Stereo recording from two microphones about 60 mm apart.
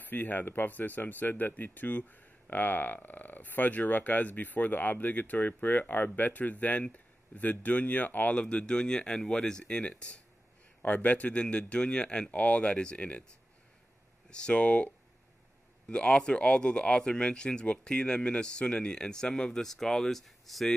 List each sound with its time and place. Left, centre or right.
0.0 s speech: left
14.3 s speech: centre